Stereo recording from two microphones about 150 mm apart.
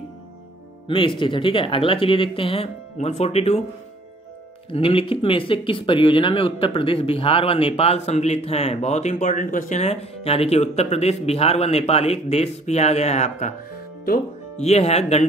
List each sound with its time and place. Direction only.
0.8 s speech: 35° left (ahead or behind)
4.6 s speech: 35° left (ahead or behind)
14.6 s speech: 45° left (ahead or behind)